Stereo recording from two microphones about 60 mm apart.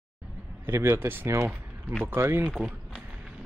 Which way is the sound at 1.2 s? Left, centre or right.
Right.